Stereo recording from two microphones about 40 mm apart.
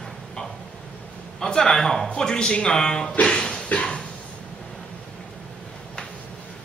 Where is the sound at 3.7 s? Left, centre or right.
Left.